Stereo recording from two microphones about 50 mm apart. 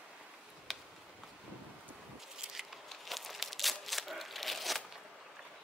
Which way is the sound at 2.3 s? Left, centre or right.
Centre.